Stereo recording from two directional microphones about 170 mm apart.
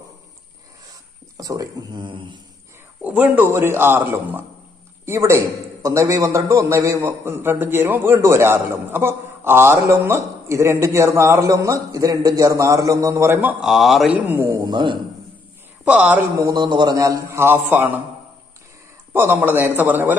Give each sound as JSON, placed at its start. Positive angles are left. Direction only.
{"t": 1.3, "sound": "a man's voice", "side_deg": -20}
{"t": 3.0, "sound": "a man's voice", "side_deg": -10}
{"t": 15.8, "sound": "a man's voice", "side_deg": -5}
{"t": 16.4, "sound": "a man's voice", "side_deg": -25}
{"t": 19.1, "sound": "a man's voice", "side_deg": -10}